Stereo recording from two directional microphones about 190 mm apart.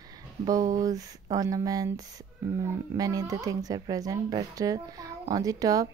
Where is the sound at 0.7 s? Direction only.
20° right (ahead or behind).